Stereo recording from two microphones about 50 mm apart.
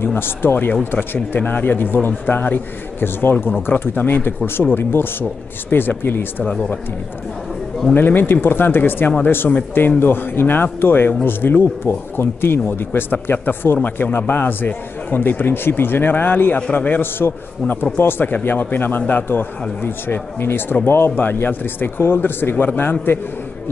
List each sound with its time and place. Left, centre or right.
0.0 s a man's voice: left
6.4 s speech: centre
7.9 s a man's voice: left
16.7 s speech: left
17.0 s a man's voice: left
21.2 s a man's voice: left